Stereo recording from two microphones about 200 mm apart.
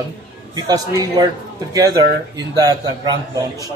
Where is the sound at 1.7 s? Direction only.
15° right (ahead or behind).